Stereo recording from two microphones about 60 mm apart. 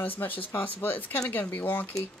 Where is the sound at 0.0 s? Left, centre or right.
Left.